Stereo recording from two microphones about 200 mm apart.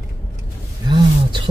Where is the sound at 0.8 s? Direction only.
25° right (ahead or behind).